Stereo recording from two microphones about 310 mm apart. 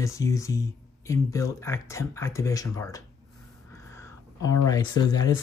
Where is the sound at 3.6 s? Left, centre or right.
Centre.